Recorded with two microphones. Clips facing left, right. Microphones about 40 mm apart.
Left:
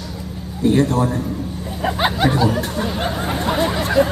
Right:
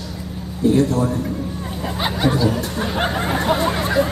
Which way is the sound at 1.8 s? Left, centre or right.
Left.